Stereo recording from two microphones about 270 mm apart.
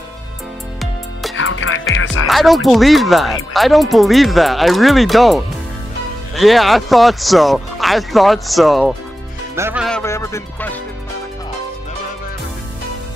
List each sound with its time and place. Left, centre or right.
1.3 s music: left
2.2 s speech: centre
9.8 s music: centre